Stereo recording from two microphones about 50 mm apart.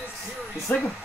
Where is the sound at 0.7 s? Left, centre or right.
Left.